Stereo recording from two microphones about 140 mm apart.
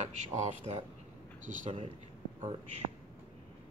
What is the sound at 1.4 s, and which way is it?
Speech, 65° right (ahead or behind).